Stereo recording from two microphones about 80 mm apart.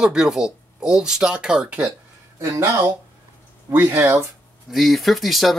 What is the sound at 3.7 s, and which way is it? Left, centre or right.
Speech, right.